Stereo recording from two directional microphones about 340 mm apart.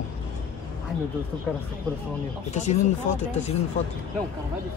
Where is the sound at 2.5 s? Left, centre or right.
Left.